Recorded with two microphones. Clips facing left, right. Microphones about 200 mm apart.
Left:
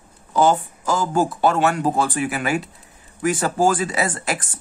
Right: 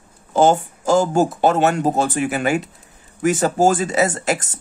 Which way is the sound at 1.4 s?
20° right (ahead or behind).